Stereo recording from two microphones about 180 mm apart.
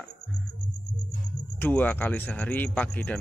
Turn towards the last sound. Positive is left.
turn(degrees=10)  # may be behind; listen again after turning